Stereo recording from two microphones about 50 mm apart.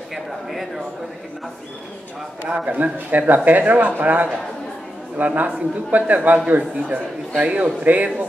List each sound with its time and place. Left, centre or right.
0.1 s a man's voice: centre
2.5 s speech: right